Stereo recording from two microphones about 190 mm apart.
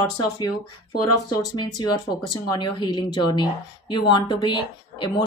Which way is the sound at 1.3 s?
20° left (ahead or behind).